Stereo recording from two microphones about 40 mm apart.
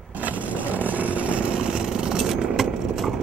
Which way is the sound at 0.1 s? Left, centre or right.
Right.